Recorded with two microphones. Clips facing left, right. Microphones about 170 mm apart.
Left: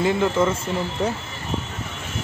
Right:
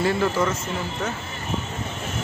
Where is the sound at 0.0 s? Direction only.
20° left (ahead or behind).